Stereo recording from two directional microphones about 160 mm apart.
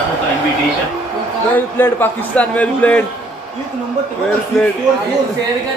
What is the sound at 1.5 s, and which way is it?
A man's voice, 10° left (ahead or behind).